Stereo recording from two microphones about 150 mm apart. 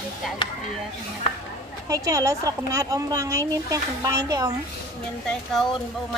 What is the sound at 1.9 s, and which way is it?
A woman's voice, 25° right (ahead or behind).